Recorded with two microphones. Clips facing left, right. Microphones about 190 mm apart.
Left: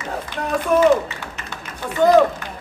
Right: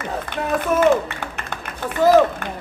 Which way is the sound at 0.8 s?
55° right (ahead or behind).